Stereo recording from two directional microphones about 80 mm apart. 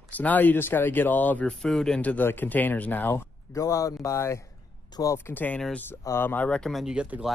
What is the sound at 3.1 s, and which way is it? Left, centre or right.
Speech, left.